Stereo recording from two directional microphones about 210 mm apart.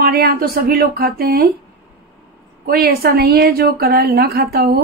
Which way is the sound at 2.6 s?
45° right (ahead or behind).